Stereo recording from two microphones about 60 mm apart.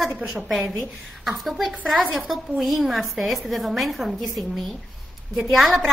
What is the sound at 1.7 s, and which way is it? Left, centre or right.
Speech, right.